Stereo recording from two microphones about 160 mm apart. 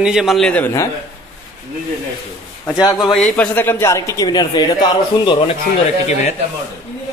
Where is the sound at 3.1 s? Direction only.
5° left (ahead or behind); by 5.3 s 30° left (ahead or behind).